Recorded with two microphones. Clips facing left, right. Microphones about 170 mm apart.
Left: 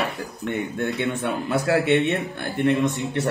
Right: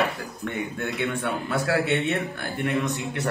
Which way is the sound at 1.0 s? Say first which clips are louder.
Left 2 dB; 20° left (ahead or behind).